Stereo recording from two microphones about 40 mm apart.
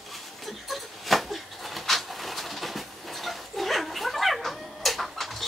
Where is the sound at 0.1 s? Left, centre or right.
Centre.